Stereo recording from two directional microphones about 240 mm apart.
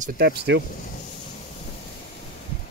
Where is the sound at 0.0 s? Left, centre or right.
Right.